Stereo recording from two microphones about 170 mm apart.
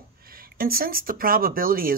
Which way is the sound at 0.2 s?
60° right (ahead or behind).